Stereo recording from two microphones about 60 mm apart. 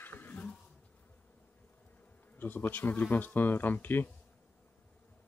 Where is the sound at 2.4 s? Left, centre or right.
Left.